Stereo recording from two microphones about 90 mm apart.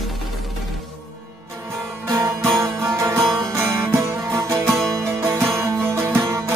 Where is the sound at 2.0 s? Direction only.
35° right (ahead or behind).